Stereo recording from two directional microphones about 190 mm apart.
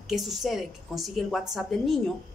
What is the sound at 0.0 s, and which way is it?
Speech, centre (ahead or behind).